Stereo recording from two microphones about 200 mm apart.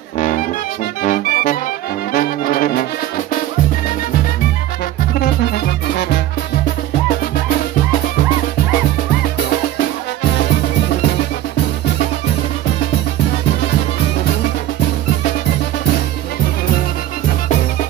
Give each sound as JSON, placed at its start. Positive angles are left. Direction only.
{"t": 0.2, "sound": "music", "side_deg": 40}
{"t": 1.0, "sound": "brass instrument", "side_deg": 40}
{"t": 5.2, "sound": "music", "side_deg": 55}